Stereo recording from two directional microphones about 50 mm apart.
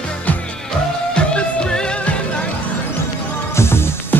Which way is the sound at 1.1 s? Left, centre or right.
Left.